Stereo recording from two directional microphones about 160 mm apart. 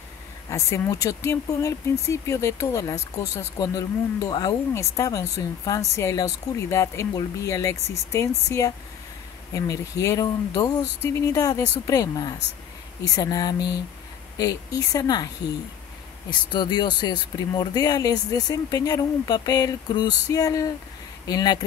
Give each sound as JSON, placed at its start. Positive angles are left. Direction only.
{"t": 0.5, "sound": "speech", "side_deg": 20}
{"t": 16.3, "sound": "speech", "side_deg": 25}